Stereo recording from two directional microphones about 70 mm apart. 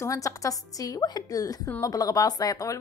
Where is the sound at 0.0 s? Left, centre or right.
Left.